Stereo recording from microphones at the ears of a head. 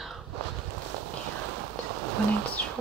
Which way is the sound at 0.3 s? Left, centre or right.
Right.